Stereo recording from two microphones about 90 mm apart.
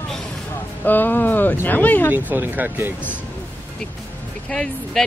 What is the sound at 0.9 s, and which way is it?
Speech, 20° left (ahead or behind).